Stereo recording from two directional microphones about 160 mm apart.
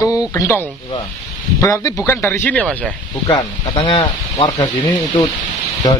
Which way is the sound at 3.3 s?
30° left (ahead or behind).